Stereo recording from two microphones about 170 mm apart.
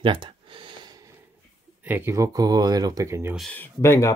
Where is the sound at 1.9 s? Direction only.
15° right (ahead or behind).